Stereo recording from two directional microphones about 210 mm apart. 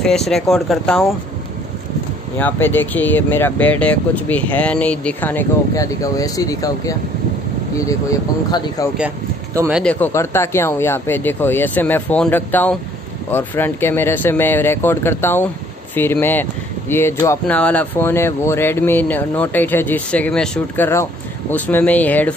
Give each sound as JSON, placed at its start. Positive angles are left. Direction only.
{"t": 0.0, "sound": "speech", "side_deg": 0}
{"t": 2.3, "sound": "speech", "side_deg": 10}
{"t": 8.5, "sound": "speech", "side_deg": 20}
{"t": 9.5, "sound": "speech", "side_deg": -10}
{"t": 9.8, "sound": "speech", "side_deg": 10}